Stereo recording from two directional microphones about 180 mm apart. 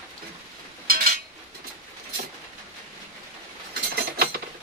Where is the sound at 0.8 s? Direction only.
55° right (ahead or behind).